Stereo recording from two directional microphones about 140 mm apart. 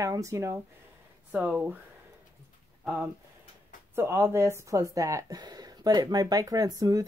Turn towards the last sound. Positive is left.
turn(degrees=-25)  # may be behind; listen again after turning